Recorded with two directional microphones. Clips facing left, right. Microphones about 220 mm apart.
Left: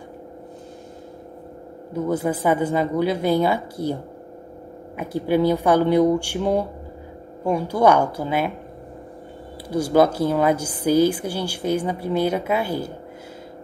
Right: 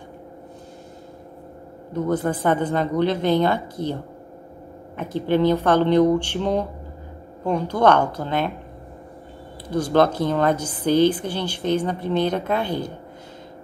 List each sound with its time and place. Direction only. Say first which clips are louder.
1.9 s a woman's voice: even; 10° left (ahead or behind)
9.7 s a woman's voice: left 1 dB; 10° left (ahead or behind)